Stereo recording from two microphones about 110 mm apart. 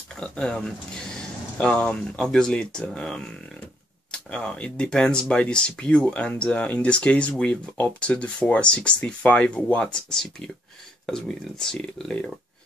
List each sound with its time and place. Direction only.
0.2 s speech: 5° left (ahead or behind)